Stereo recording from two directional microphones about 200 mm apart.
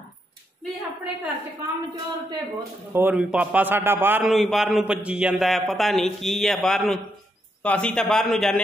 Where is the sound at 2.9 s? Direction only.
10° right (ahead or behind).